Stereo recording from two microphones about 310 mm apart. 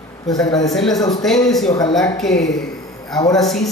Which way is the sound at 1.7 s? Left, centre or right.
Centre.